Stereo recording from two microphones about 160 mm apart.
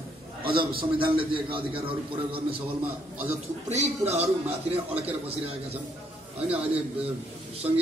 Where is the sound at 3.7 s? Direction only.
45° right (ahead or behind).